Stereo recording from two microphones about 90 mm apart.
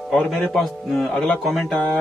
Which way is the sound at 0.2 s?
Centre (ahead or behind).